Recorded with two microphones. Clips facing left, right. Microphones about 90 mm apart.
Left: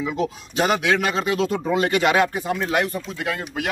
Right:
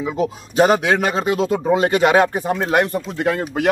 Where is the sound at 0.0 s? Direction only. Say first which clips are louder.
Right 3 dB; 30° right (ahead or behind).